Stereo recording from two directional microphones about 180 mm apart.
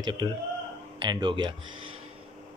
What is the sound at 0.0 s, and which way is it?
A man's voice, 25° right (ahead or behind).